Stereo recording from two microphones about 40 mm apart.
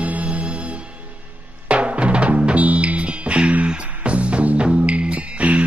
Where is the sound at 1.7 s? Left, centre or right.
Right.